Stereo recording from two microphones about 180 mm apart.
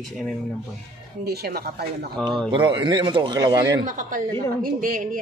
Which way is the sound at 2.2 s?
5° left (ahead or behind).